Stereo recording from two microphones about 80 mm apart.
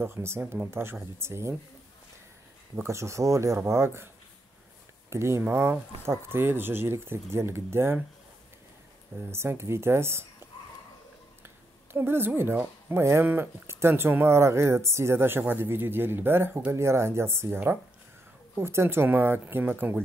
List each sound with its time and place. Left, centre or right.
0.0 s speech: right
2.7 s speech: right
5.1 s speech: right
9.3 s speech: right
11.4 s speech: right